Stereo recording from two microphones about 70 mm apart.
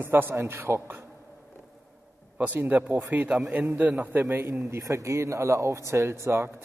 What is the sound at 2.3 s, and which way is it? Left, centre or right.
A man's voice, right.